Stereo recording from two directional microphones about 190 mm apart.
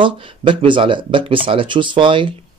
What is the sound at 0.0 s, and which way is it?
Speech, 25° right (ahead or behind).